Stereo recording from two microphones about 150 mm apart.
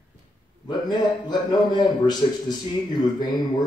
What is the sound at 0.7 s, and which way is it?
A man's voice, 30° left (ahead or behind).